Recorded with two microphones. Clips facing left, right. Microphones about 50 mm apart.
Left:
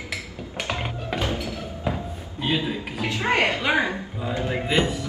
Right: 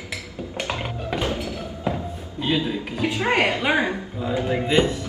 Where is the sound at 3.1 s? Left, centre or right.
Right.